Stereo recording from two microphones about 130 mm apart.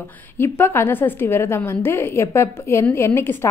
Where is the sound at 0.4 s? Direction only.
20° left (ahead or behind).